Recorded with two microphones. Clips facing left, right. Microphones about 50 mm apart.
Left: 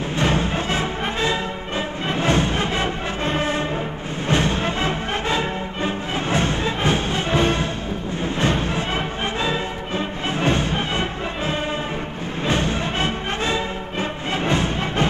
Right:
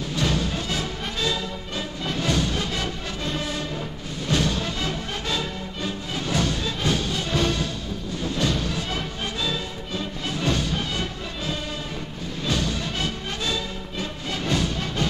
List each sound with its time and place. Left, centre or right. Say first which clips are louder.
0.1 s music: left 4 dB; left